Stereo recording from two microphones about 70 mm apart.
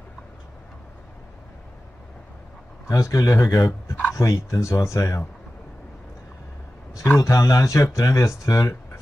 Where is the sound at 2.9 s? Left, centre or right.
Left.